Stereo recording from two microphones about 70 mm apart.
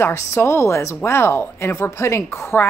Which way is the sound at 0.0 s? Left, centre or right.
Left.